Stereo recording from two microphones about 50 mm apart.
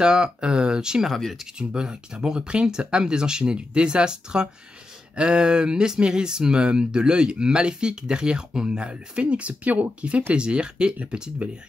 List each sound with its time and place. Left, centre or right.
0.0 s speech: centre
1.1 s speech: centre
1.6 s speech: centre